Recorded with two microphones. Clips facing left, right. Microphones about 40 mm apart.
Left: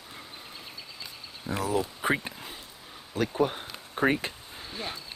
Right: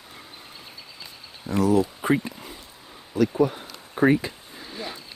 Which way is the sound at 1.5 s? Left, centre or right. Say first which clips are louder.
Right 8 dB; centre.